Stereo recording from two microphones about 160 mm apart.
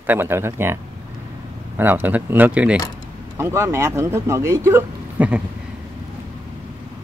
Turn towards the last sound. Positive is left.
turn(degrees=-10)  # may be behind; listen again after turning